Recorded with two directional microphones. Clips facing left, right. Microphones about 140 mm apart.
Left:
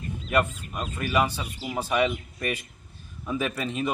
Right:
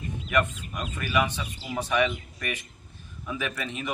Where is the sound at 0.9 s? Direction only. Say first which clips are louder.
Left 2 dB; 35° left (ahead or behind).